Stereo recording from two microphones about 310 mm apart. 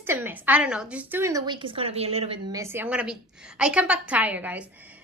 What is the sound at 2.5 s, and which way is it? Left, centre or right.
A woman's voice, centre.